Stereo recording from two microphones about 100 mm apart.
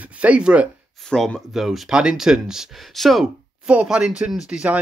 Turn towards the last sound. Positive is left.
turn(degrees=-10)  # may be behind; listen again after turning